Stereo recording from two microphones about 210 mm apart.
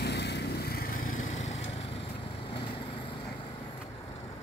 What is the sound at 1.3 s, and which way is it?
Lawn mower, 30° left (ahead or behind).